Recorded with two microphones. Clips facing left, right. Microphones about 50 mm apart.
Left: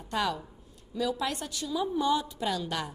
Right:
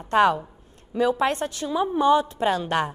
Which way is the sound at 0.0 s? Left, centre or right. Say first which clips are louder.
Right 11 dB; right.